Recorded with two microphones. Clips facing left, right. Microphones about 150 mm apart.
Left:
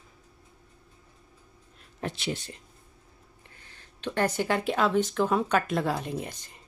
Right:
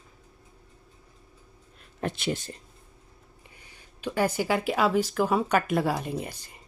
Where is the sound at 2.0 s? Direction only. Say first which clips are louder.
Right 3 dB; 55° right (ahead or behind).